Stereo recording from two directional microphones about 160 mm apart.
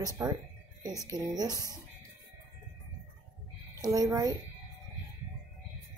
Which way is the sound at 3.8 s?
20° right (ahead or behind).